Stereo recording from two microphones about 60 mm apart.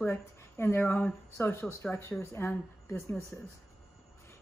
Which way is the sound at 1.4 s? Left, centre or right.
Left.